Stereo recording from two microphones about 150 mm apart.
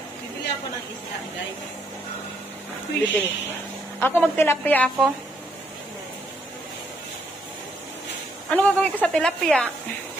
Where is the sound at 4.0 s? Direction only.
15° left (ahead or behind).